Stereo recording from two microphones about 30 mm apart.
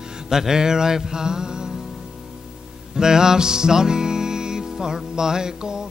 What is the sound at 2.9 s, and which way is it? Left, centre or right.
Music, right.